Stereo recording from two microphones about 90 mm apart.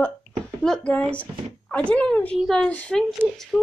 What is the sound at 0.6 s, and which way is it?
Speech, 10° left (ahead or behind).